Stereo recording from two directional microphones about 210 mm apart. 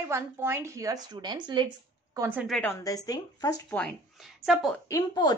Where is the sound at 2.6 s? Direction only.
15° left (ahead or behind).